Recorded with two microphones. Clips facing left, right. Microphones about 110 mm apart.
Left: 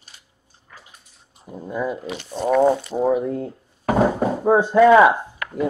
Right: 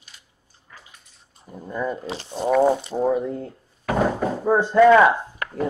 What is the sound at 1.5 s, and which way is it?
Speech, 10° left (ahead or behind).